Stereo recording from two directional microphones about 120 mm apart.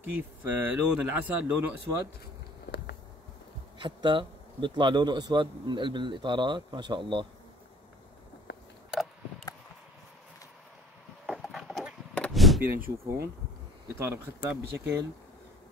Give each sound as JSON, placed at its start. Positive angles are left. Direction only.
{"t": 0.0, "sound": "speech", "side_deg": -15}
{"t": 3.7, "sound": "a man's voice", "side_deg": -40}
{"t": 11.2, "sound": "a sound", "side_deg": 0}
{"t": 12.1, "sound": "chop", "side_deg": 5}
{"t": 12.6, "sound": "speech", "side_deg": -15}